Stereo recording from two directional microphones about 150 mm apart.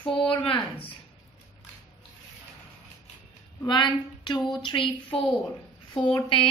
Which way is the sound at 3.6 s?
30° left (ahead or behind).